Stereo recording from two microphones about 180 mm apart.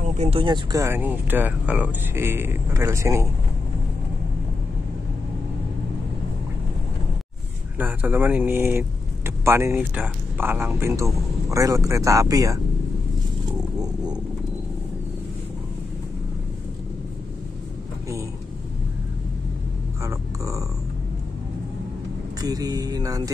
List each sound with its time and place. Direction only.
0.2 s speech: 30° right (ahead or behind); by 3.3 s 15° right (ahead or behind)
7.8 s speech: 10° right (ahead or behind)
20.0 s cat: 15° right (ahead or behind)
22.4 s speech: 20° right (ahead or behind)